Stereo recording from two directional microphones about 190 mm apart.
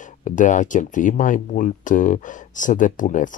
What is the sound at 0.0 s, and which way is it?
Speech, 40° left (ahead or behind).